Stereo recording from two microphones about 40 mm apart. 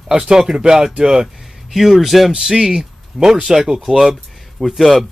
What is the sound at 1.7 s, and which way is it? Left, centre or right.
A man's voice, centre.